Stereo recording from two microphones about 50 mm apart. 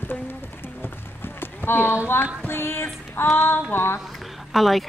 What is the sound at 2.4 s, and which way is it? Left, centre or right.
Female singing, left.